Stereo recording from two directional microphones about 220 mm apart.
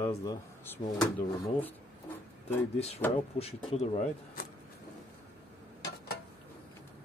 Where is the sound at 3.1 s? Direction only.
25° left (ahead or behind).